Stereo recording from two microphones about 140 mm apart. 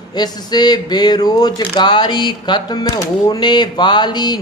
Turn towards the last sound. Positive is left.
turn(degrees=30)  # may be behind; listen again after turning